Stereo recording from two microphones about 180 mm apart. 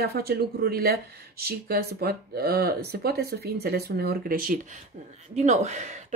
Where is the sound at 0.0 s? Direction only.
60° right (ahead or behind).